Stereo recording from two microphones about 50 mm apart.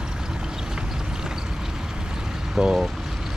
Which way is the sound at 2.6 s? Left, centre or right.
Centre.